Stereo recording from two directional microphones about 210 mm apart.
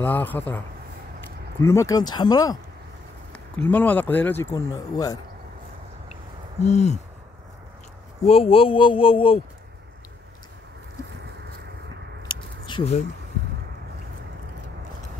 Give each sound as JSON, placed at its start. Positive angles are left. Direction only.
{"t": 0.0, "sound": "speech", "side_deg": 10}
{"t": 3.5, "sound": "speech", "side_deg": 10}
{"t": 6.6, "sound": "speech", "side_deg": 30}
{"t": 8.3, "sound": "speech", "side_deg": 25}
{"t": 12.3, "sound": "a sound", "side_deg": 20}